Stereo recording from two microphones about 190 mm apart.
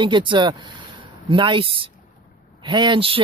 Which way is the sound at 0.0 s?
25° right (ahead or behind).